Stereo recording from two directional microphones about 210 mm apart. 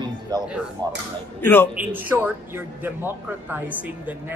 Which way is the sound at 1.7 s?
10° right (ahead or behind).